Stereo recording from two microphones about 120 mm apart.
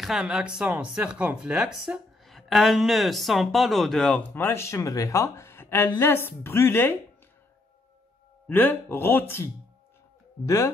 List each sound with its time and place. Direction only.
0.0 s speech: 5° right (ahead or behind)
4.2 s speech: 15° left (ahead or behind)
8.5 s speech: 15° left (ahead or behind)